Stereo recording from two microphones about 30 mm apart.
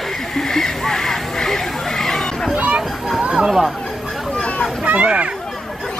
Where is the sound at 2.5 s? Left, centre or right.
Right.